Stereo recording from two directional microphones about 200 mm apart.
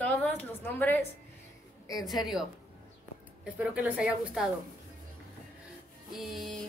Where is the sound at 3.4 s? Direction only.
5° right (ahead or behind).